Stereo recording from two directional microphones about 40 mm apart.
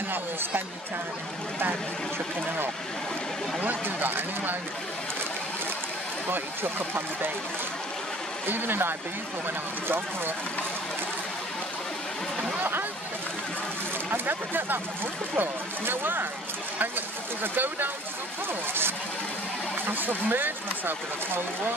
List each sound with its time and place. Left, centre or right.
3.6 s speech: right
8.5 s speech: right
14.1 s speech: right
17.4 s speech: right
18.7 s speech: right
19.9 s speech: right